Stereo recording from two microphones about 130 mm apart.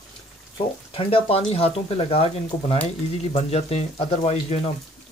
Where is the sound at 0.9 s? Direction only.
45° left (ahead or behind).